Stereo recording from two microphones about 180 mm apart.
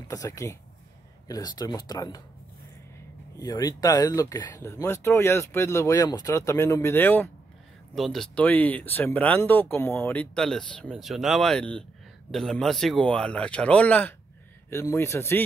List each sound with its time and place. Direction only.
0.1 s speech: 20° left (ahead or behind)
3.3 s speech: 20° left (ahead or behind)